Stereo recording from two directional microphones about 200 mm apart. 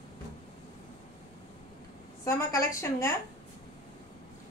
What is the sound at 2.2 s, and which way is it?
Speech, 15° left (ahead or behind).